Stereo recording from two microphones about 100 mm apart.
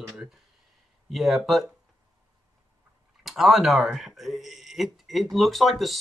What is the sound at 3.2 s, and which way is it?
Speech, centre (ahead or behind).